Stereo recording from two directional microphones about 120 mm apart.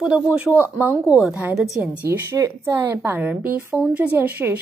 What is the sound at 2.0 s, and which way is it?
A woman's voice, 20° right (ahead or behind).